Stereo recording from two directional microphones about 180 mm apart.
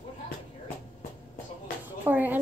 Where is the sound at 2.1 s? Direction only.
10° right (ahead or behind).